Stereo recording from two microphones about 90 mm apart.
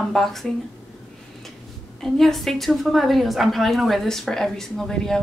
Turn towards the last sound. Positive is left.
turn(degrees=5)  # may be behind; listen again after turning